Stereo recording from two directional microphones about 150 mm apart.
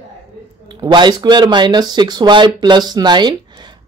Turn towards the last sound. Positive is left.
turn(degrees=-30)  # may be behind; listen again after turning